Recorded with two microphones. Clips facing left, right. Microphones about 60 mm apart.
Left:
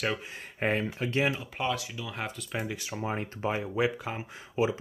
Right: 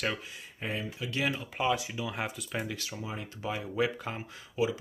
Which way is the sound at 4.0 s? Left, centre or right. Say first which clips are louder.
Left 2 dB; centre.